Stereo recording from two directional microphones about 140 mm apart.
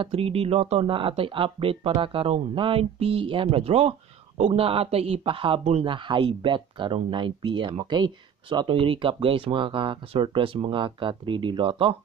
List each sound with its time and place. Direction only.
0.0 s speech: 45° right (ahead or behind)